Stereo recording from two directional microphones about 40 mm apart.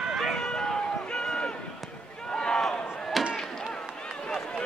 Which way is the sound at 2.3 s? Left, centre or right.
Centre.